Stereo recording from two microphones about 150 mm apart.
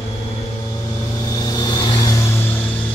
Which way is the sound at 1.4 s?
25° left (ahead or behind).